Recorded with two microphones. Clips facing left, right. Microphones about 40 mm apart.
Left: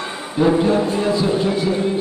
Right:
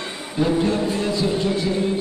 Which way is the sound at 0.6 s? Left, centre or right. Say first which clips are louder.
Left 4 dB; centre.